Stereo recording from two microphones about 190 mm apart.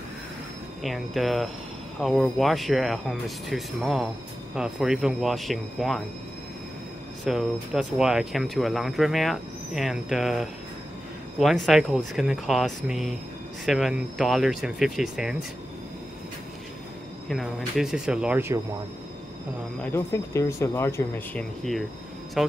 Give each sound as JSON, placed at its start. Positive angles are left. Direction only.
{"t": 0.8, "sound": "speech", "side_deg": 0}
{"t": 7.2, "sound": "speech", "side_deg": 0}
{"t": 17.3, "sound": "speech", "side_deg": 0}
{"t": 19.8, "sound": "speech", "side_deg": 15}